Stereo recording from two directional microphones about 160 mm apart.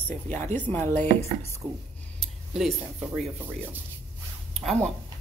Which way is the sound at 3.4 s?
10° right (ahead or behind).